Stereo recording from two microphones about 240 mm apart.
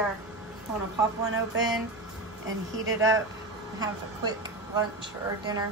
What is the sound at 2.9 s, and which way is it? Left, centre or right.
A woman's voice, centre.